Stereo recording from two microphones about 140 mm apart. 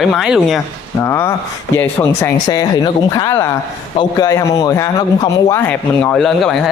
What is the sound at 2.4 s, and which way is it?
A man's voice, 30° left (ahead or behind).